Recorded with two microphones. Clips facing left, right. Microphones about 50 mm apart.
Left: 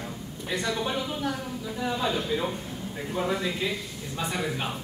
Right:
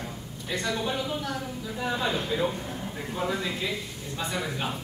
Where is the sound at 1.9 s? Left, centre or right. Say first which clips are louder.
Even; right.